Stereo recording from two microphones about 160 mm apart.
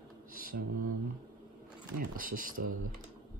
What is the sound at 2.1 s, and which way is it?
Speech, 60° right (ahead or behind).